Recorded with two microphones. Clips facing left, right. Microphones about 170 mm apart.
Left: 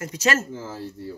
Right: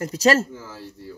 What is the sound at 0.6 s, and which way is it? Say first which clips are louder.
Speech: left 5 dB; 30° left (ahead or behind).